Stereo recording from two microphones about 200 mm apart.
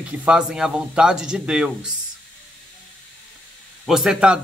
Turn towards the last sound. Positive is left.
turn(degrees=-5)  # may be behind; listen again after turning